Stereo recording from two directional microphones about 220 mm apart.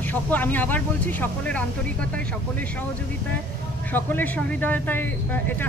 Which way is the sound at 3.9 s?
10° left (ahead or behind).